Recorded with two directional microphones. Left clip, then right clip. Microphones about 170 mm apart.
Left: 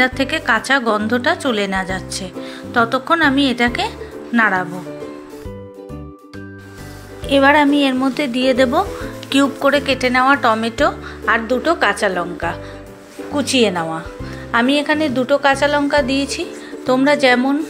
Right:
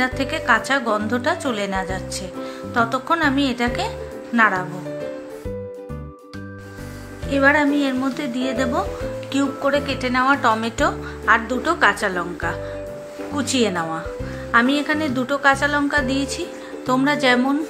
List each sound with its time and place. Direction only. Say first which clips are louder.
0.0 s a woman's voice: left 5 dB; 20° left (ahead or behind)
7.2 s a woman's voice: left 5 dB; 30° left (ahead or behind)